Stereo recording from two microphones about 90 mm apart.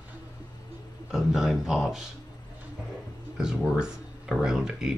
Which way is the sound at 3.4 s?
5° right (ahead or behind).